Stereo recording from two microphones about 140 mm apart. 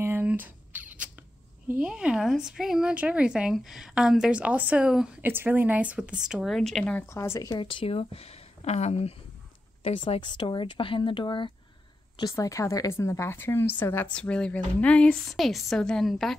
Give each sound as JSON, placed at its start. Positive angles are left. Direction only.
{"t": 0.0, "sound": "rodents", "side_deg": -15}
{"t": 1.7, "sound": "speech", "side_deg": -5}
{"t": 7.1, "sound": "a woman's voice", "side_deg": 20}
{"t": 7.7, "sound": "speech", "side_deg": 40}
{"t": 12.2, "sound": "a woman's voice", "side_deg": 25}